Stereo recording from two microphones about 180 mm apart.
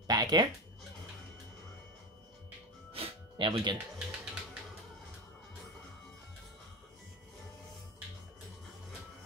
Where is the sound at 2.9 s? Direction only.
30° right (ahead or behind).